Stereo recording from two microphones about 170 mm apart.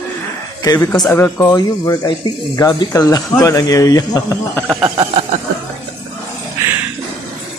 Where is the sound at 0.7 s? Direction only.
20° left (ahead or behind).